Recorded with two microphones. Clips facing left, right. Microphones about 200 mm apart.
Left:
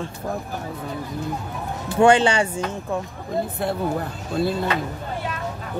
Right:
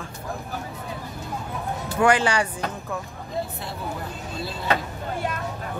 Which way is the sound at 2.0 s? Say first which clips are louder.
Left 5 dB; 25° left (ahead or behind).